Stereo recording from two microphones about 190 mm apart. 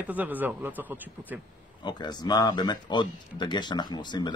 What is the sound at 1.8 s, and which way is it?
Speech, 20° left (ahead or behind).